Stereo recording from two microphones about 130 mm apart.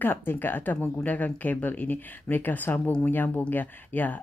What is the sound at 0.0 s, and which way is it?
Speech, 15° left (ahead or behind).